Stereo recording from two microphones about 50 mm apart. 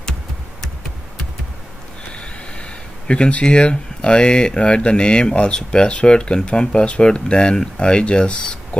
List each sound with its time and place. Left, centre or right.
2.1 s speech: left